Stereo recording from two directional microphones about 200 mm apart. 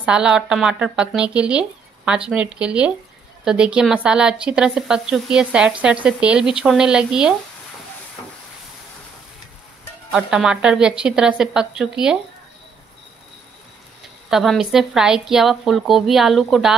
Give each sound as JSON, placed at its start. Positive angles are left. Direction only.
{"t": 0.0, "sound": "speech", "side_deg": -5}
{"t": 10.1, "sound": "speech", "side_deg": -5}
{"t": 14.3, "sound": "speech", "side_deg": 0}